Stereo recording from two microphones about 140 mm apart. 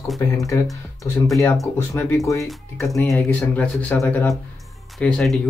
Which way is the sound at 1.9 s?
20° left (ahead or behind).